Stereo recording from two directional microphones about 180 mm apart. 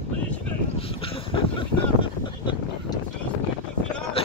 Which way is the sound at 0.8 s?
30° left (ahead or behind).